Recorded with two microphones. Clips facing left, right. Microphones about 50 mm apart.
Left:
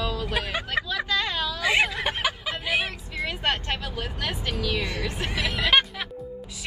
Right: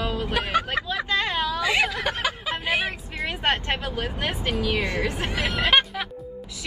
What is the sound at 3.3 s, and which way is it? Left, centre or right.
Speech, right.